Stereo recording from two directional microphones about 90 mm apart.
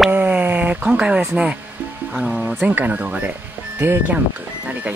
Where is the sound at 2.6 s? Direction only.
20° right (ahead or behind).